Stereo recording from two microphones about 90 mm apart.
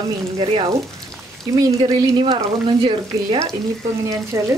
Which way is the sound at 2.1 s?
65° right (ahead or behind).